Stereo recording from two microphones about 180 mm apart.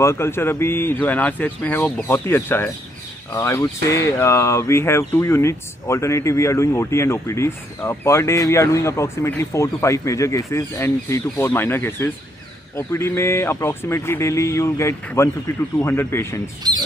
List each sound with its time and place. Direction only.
0.0 s speech: 15° left (ahead or behind)
16.6 s rodents: 20° right (ahead or behind)